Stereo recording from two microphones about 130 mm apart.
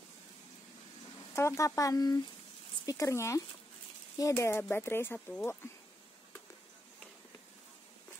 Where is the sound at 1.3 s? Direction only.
20° left (ahead or behind).